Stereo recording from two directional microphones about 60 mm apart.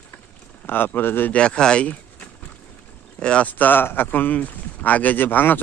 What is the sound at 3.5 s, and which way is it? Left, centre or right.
A man's voice, left.